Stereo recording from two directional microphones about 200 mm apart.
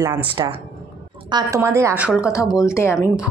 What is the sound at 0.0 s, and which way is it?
Speech, 20° right (ahead or behind).